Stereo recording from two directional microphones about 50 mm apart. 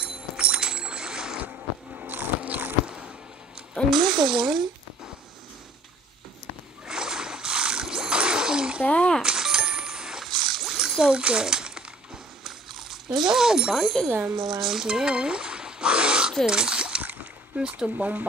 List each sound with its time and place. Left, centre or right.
0.0 s bicycle bell: right
1.4 s biting: right
3.9 s a sound: centre
6.9 s splash: centre
8.8 s coin: left
9.2 s a sound: centre
10.2 s a sound: centre
11.1 s speech: right
12.4 s a sound: centre
14.0 s speech: centre
14.3 s speech: centre
17.0 s splash: right
17.6 s speech: right